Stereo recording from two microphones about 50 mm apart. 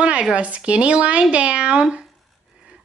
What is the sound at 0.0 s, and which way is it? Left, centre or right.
Speech, right.